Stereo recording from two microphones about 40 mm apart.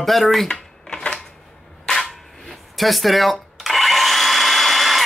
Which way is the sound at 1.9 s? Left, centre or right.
Centre.